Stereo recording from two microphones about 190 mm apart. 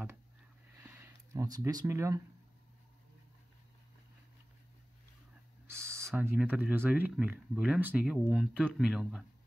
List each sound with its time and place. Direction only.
0.7 s a sound: 10° right (ahead or behind)
5.7 s owl: 15° right (ahead or behind)
6.9 s speech: 5° right (ahead or behind)